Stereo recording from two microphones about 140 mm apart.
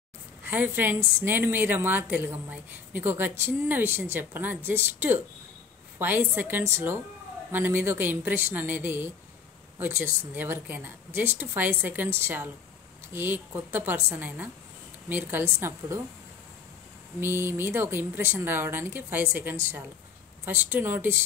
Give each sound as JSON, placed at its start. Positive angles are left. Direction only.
{"t": 0.5, "sound": "a woman's voice", "side_deg": -15}
{"t": 17.2, "sound": "a woman's voice", "side_deg": -15}